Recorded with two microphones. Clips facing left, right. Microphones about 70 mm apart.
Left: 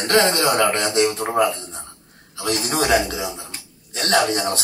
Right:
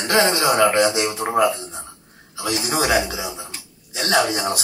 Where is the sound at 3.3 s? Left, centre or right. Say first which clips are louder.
Right 1 dB; centre.